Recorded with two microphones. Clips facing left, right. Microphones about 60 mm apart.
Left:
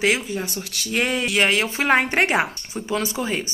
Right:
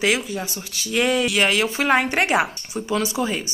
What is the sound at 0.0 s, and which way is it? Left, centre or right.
A woman's voice, left.